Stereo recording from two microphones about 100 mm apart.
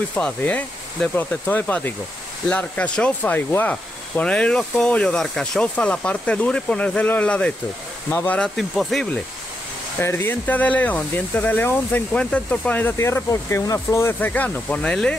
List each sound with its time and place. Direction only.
0.1 s speech: 15° left (ahead or behind)
8.5 s speech: centre (ahead or behind)
9.9 s speech: 20° left (ahead or behind)
12.9 s speech: 30° left (ahead or behind); by 15.1 s 10° left (ahead or behind)